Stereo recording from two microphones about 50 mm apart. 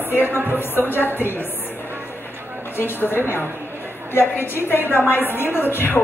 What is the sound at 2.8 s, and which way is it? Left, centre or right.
A woman's voice, left.